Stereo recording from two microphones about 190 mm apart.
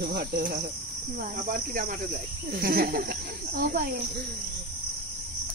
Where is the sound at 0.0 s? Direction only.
55° right (ahead or behind).